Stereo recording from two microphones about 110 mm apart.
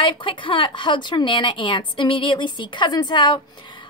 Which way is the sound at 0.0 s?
50° left (ahead or behind).